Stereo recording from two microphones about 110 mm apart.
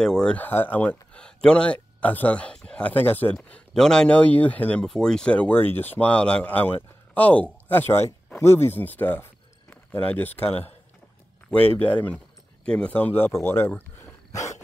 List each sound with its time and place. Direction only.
0.0 s speech: 5° left (ahead or behind)